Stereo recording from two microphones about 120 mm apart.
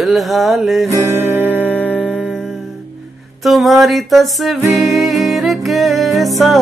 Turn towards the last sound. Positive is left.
turn(degrees=0)  # may be behind; listen again after turning